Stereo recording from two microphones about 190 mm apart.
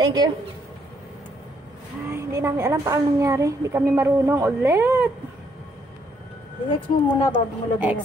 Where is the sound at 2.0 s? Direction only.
15° right (ahead or behind).